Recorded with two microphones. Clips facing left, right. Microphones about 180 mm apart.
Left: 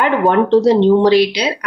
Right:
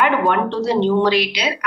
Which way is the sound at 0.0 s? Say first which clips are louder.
Left 4 dB; 35° left (ahead or behind).